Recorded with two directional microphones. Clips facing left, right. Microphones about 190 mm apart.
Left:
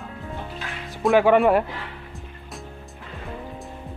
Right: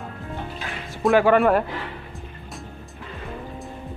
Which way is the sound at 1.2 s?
15° left (ahead or behind).